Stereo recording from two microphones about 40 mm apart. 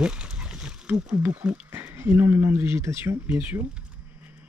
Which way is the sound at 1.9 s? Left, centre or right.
Right.